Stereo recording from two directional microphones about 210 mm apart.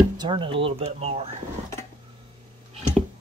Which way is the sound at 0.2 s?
25° right (ahead or behind).